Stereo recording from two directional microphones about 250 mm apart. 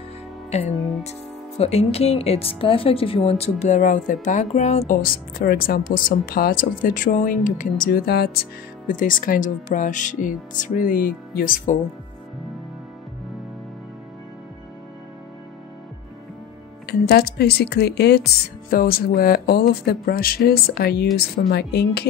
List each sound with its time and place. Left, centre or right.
0.5 s music: left
0.7 s music: centre
1.6 s speech: left
16.8 s speech: left